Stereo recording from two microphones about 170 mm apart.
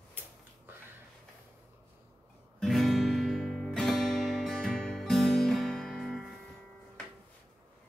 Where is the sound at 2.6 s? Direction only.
Centre (ahead or behind).